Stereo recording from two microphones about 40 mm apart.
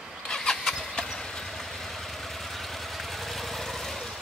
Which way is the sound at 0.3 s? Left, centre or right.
Centre.